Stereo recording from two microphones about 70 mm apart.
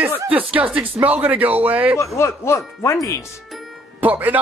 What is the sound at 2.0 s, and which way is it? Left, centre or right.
Speech, left.